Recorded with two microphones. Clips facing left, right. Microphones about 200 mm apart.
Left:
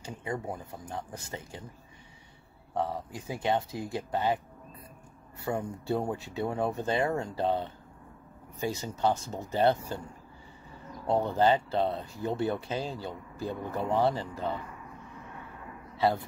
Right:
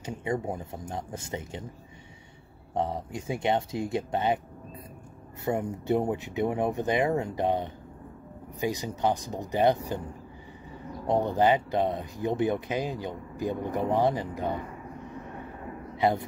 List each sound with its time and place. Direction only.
0.0 s speech: 20° right (ahead or behind)
2.7 s speech: 20° right (ahead or behind)
5.4 s speech: 20° right (ahead or behind)
11.1 s speech: 15° right (ahead or behind)
16.0 s speech: 20° right (ahead or behind)